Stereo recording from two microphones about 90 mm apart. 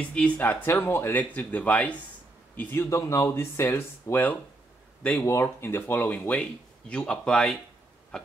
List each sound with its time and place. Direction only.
0.0 s speech: 10° left (ahead or behind)
0.4 s speech: 20° left (ahead or behind)
5.2 s speech: 30° left (ahead or behind); by 7.5 s 10° left (ahead or behind)
8.1 s a sound: 10° left (ahead or behind)